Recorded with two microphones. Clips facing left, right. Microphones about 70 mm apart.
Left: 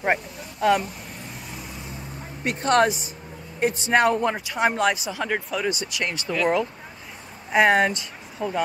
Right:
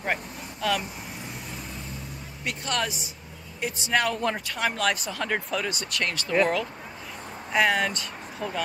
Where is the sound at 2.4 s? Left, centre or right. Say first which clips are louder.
Left 10 dB; left.